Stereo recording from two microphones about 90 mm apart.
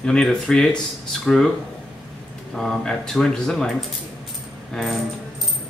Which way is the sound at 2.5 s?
5° left (ahead or behind).